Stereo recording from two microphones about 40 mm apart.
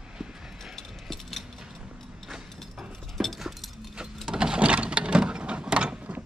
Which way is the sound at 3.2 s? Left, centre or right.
Centre.